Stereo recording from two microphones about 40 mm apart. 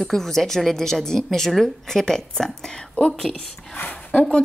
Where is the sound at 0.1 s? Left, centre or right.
Centre.